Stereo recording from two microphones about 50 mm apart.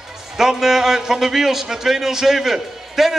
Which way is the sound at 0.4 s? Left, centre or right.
Centre.